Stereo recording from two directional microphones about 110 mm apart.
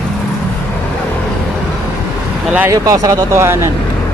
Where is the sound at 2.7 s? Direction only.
30° right (ahead or behind).